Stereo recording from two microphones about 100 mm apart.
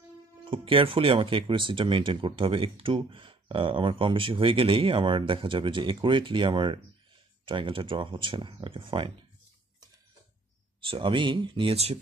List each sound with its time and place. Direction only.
0.5 s speech: 60° right (ahead or behind)
10.9 s speech: 55° right (ahead or behind); by 12.0 s 90° right